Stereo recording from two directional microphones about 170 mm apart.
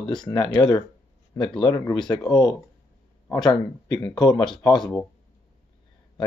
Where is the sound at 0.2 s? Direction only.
25° left (ahead or behind).